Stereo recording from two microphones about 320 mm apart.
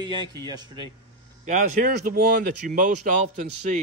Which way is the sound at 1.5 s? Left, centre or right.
Right.